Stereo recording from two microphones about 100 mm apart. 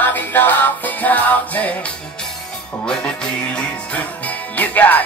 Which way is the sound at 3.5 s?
15° left (ahead or behind).